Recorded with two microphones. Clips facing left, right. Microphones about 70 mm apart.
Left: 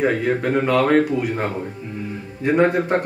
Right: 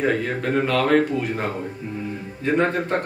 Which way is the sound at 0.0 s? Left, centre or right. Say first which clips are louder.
Left 3 dB; centre.